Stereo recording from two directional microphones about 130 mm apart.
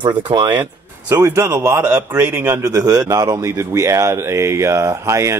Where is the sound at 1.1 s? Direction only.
25° right (ahead or behind).